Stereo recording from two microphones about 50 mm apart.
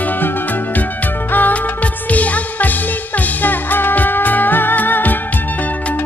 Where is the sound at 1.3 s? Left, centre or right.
Left.